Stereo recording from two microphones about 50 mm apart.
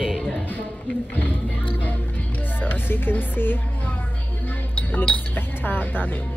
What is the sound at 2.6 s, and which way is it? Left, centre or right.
Speech, left.